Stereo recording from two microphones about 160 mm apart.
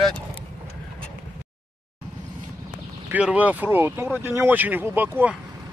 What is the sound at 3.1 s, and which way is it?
Speech, 10° right (ahead or behind).